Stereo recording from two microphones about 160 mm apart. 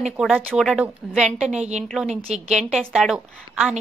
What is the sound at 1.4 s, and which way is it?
A woman's voice, 45° right (ahead or behind).